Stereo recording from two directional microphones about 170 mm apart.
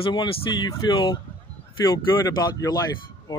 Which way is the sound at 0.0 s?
25° left (ahead or behind).